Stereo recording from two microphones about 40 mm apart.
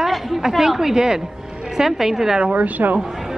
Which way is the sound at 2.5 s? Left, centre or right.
Right.